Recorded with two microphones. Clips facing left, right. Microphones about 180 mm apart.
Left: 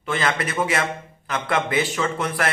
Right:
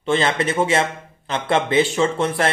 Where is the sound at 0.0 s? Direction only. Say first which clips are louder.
Right 5 dB; 25° right (ahead or behind).